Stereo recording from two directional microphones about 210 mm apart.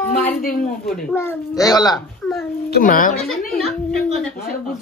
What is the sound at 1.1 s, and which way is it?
Speech, 10° left (ahead or behind).